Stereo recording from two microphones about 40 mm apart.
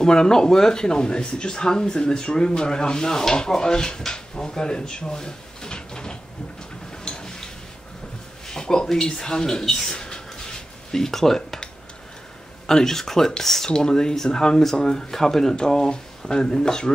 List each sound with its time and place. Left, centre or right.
0.0 s speech: centre
7.1 s a sound: centre
8.5 s a sound: centre
8.8 s speech: centre
12.6 s speech: centre
13.7 s speech: centre